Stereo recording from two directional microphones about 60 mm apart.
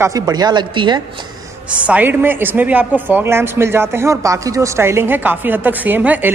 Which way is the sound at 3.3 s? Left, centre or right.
Right.